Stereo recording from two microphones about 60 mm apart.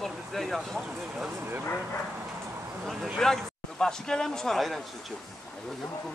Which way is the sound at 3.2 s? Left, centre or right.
Centre.